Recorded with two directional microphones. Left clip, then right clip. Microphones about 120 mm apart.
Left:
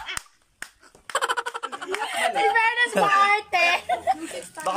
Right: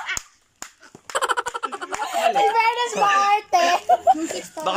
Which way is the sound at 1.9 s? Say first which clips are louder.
Right 1 dB; 35° right (ahead or behind).